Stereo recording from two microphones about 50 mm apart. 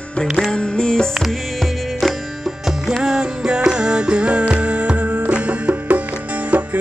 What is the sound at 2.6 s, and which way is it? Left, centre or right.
Music, centre.